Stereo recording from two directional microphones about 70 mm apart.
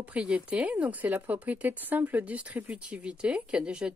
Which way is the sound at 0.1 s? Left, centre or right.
Centre.